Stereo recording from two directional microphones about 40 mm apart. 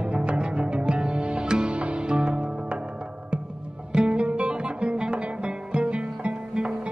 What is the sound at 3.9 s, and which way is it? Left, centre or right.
Music, right.